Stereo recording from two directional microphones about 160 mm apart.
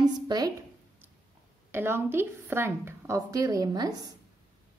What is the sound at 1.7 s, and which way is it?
Speech, 15° right (ahead or behind).